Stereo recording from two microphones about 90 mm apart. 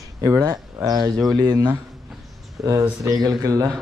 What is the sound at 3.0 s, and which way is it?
Speech, 45° right (ahead or behind).